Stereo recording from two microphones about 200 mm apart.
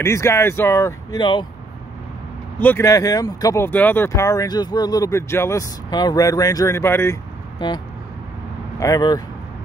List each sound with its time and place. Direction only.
0.0 s speech: 15° left (ahead or behind)
2.6 s speech: 10° left (ahead or behind)
8.7 s speech: 15° left (ahead or behind)